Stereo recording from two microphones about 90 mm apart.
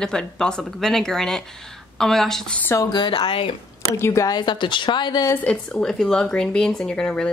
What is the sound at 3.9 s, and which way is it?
Speech, 30° left (ahead or behind).